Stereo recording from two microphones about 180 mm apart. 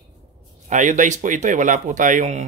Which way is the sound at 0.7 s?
45° right (ahead or behind).